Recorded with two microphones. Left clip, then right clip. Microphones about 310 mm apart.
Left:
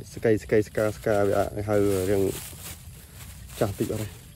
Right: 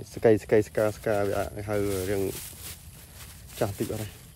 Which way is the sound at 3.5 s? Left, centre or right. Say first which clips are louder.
Left 3 dB; centre.